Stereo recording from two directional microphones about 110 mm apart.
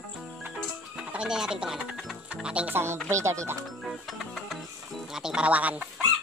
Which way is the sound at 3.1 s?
25° right (ahead or behind).